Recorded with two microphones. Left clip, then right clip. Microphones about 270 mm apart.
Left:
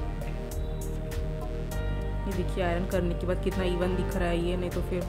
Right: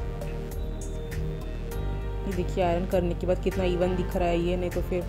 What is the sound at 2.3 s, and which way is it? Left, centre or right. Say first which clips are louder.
Speech: right 4 dB; centre.